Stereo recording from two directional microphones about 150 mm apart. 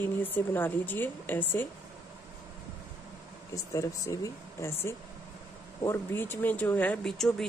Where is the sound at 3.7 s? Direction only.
20° left (ahead or behind); by 7.5 s 5° left (ahead or behind).